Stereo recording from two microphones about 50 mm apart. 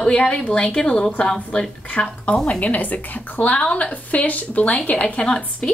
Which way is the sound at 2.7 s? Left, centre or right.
Left.